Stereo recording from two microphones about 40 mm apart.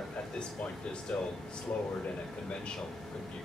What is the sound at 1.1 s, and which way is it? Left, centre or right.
Speech, centre.